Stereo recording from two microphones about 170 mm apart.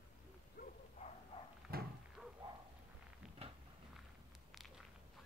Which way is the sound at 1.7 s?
60° right (ahead or behind).